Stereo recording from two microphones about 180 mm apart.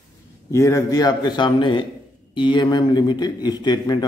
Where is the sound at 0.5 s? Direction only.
15° left (ahead or behind).